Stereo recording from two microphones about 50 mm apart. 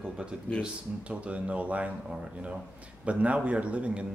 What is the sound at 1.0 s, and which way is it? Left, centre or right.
Speech, right.